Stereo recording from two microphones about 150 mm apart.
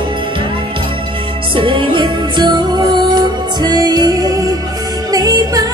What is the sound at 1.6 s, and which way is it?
Music, 35° right (ahead or behind).